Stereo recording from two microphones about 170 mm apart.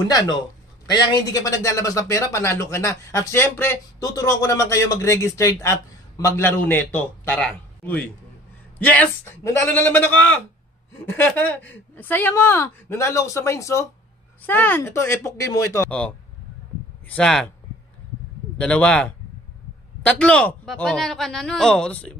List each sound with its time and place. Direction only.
0.8 s a man's voice: 25° left (ahead or behind); by 17.5 s 5° left (ahead or behind)
18.6 s a man's voice: 5° left (ahead or behind)